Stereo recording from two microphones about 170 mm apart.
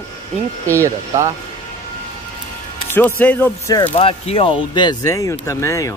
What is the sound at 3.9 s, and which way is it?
Speech, 35° left (ahead or behind).